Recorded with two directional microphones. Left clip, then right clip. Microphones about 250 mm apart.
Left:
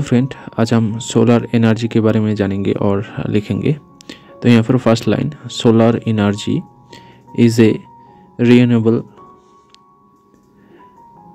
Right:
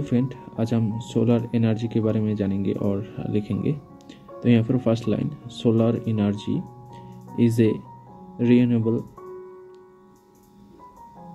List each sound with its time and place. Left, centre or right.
0.0 s speech: left